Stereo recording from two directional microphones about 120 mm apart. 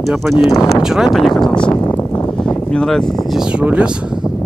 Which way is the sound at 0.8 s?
5° right (ahead or behind).